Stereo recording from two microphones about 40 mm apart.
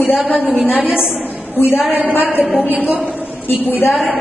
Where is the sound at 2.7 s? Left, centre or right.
Right.